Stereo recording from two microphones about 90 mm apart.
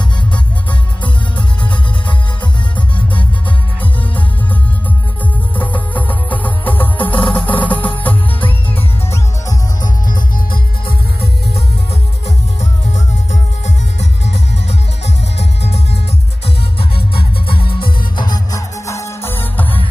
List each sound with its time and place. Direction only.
5.6 s music: 20° left (ahead or behind)
7.7 s music: 70° left (ahead or behind)
16.9 s music: 75° left (ahead or behind); by 18.4 s 55° left (ahead or behind)
18.5 s music: 35° left (ahead or behind)